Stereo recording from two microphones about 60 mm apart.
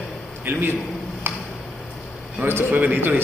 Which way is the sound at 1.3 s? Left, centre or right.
Right.